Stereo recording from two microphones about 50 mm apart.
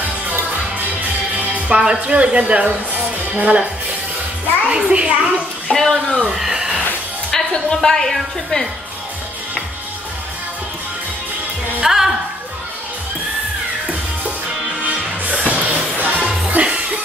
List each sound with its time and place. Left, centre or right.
1.7 s a woman's voice: centre
4.6 s a woman's voice: right
5.7 s a woman's voice: centre
6.3 s a sound: centre
7.2 s a woman's voice: centre
11.8 s music: centre
15.3 s music: right